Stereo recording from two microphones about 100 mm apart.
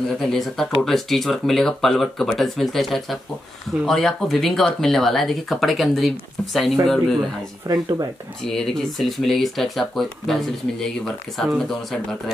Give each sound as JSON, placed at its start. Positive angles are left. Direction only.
{"t": 0.2, "sound": "speech", "side_deg": 5}
{"t": 7.6, "sound": "speech", "side_deg": -40}
{"t": 8.5, "sound": "speech", "side_deg": 5}